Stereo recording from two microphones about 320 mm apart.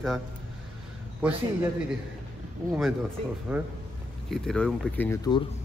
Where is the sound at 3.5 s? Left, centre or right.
Centre.